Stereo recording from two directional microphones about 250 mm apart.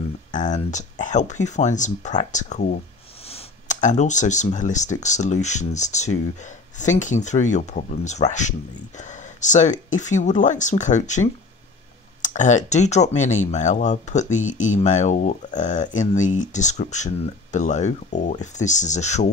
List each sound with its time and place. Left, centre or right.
0.3 s speech: left